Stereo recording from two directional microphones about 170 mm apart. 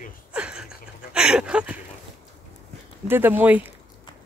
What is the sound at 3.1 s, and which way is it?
Speech, 10° right (ahead or behind).